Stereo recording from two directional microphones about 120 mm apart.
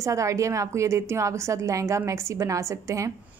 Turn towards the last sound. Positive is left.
turn(degrees=-25)  # may be behind; listen again after turning